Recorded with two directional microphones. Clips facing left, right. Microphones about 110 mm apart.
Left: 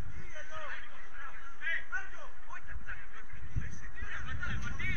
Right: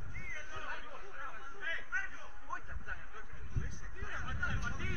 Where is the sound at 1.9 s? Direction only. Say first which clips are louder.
Even; 15° left (ahead or behind).